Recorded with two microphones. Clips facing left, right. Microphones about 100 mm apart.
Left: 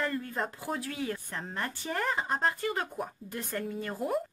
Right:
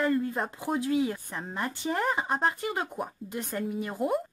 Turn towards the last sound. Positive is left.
turn(degrees=-15)  # may be behind; listen again after turning